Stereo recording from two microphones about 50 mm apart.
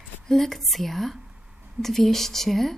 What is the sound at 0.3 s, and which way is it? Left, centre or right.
A woman's voice, centre.